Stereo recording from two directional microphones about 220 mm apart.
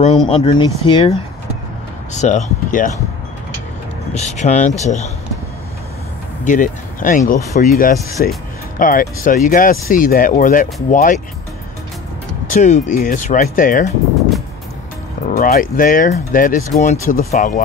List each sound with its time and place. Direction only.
0.0 s speech: 25° left (ahead or behind)
2.1 s speech: 35° left (ahead or behind)
4.1 s speech: 30° left (ahead or behind)
6.4 s speech: 35° left (ahead or behind)
12.4 s speech: 35° left (ahead or behind)
15.2 s speech: 40° left (ahead or behind)